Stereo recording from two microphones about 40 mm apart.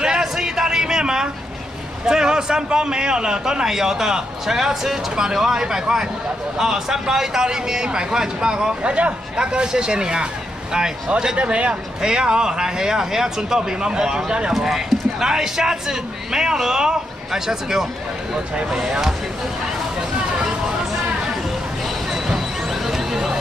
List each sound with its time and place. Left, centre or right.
0.2 s a sound: centre
2.0 s speech: centre
12.0 s speech: centre
14.5 s speech: centre
22.8 s neigh: centre